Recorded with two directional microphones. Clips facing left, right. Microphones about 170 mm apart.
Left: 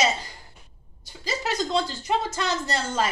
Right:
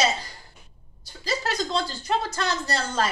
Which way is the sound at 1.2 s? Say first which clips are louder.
Even; 20° left (ahead or behind).